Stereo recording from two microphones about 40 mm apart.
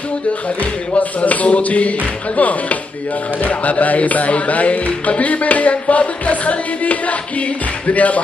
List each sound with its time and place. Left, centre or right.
0.9 s speech: left